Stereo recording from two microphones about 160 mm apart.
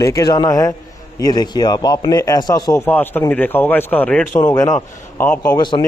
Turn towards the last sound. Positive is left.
turn(degrees=30)  # may be behind; listen again after turning